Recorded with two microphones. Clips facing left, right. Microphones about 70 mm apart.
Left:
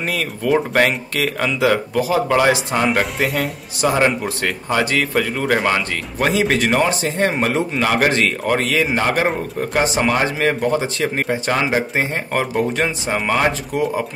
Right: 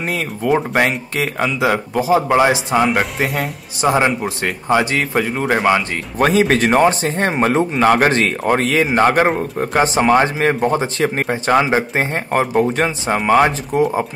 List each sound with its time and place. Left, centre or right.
0.1 s speech: right
2.8 s speech: centre
3.8 s speech: centre
6.1 s speech: right